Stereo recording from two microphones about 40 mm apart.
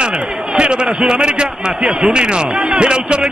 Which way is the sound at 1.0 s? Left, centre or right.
Right.